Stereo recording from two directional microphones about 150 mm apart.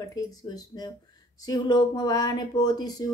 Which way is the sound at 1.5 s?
25° left (ahead or behind).